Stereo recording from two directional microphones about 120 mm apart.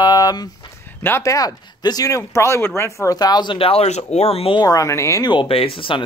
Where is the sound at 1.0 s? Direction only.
25° left (ahead or behind); by 4.6 s 55° left (ahead or behind).